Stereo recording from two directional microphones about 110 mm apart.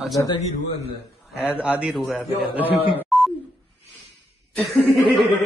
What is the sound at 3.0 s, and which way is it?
Telephone dialing, centre (ahead or behind).